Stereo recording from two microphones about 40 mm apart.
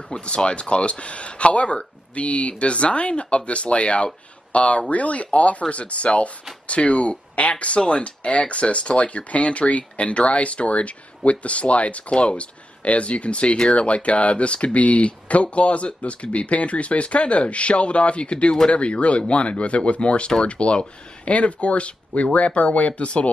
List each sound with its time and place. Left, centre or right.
0.1 s speech: left